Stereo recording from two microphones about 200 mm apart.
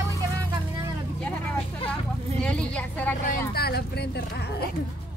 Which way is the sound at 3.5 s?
50° left (ahead or behind).